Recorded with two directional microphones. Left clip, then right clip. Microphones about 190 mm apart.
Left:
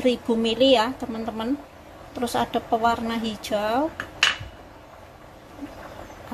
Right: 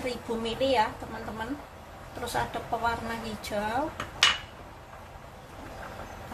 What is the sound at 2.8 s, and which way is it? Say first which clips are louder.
Speech: left 7 dB; 35° left (ahead or behind).